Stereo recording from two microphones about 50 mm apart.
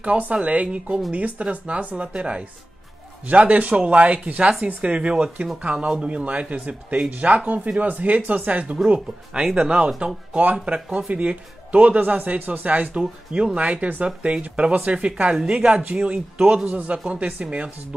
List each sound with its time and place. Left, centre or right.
0.0 s a man's voice: right
1.1 s a man's voice: right
16.6 s a man's voice: right